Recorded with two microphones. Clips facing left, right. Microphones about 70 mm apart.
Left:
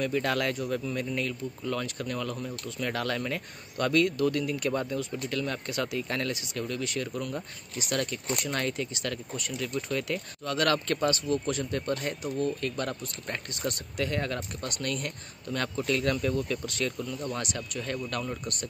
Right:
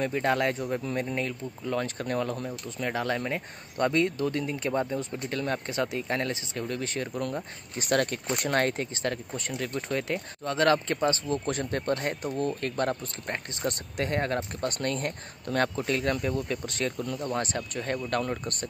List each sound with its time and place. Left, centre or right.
0.0 s speech: right
15.7 s speech: right